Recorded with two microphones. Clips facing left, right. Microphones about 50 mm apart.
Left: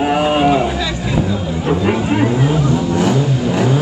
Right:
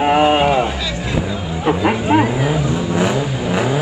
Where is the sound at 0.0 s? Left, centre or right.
Right.